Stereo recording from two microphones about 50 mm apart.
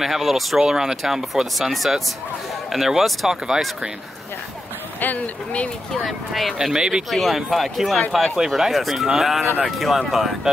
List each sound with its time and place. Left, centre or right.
0.0 s speech: centre
0.6 s speech: centre
5.0 s speech: left
5.9 s speech: centre
6.6 s speech: centre
7.1 s speech: centre